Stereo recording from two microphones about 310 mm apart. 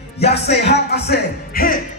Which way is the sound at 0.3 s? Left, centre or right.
Left.